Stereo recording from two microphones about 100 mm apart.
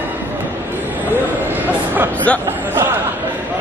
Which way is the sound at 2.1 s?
15° left (ahead or behind).